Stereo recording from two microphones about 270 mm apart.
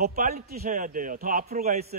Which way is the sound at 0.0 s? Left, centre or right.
Right.